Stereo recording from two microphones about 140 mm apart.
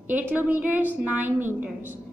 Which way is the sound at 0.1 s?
10° right (ahead or behind).